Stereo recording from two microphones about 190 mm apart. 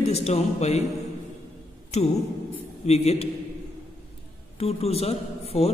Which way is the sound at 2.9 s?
35° left (ahead or behind).